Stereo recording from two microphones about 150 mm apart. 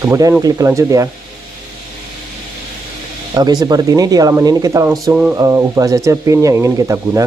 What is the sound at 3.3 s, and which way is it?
Speech, 25° right (ahead or behind).